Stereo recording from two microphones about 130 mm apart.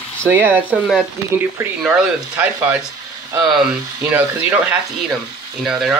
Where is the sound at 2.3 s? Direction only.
10° right (ahead or behind).